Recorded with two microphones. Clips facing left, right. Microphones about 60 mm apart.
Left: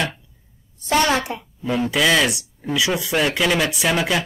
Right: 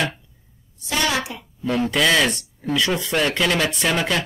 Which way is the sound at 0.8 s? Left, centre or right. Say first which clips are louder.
Left 4 dB; left.